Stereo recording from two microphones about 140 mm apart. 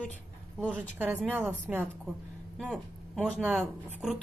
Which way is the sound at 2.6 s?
Centre (ahead or behind).